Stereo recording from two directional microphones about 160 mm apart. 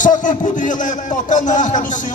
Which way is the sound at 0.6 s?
55° left (ahead or behind).